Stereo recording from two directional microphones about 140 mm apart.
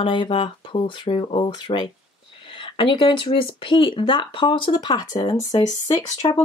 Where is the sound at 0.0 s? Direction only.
35° left (ahead or behind).